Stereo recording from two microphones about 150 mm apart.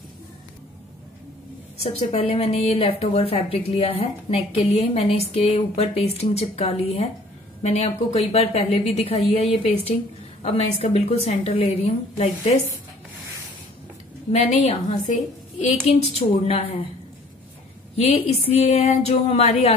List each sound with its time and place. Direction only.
1.8 s a woman's voice: 45° left (ahead or behind)
14.3 s a woman's voice: 45° left (ahead or behind)
17.9 s a woman's voice: 40° left (ahead or behind)